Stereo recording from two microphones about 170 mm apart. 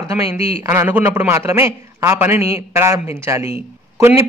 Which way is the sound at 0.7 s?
15° right (ahead or behind).